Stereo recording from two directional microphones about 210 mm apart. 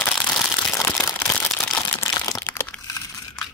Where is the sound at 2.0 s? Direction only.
15° left (ahead or behind).